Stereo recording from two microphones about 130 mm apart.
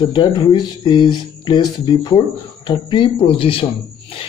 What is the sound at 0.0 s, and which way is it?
Speech, 35° left (ahead or behind).